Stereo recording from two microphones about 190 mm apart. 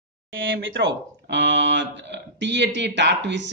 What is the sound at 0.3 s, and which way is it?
A man's voice, 85° right.